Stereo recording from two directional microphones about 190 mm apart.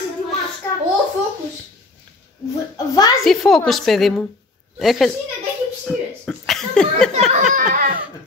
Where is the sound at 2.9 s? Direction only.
20° left (ahead or behind).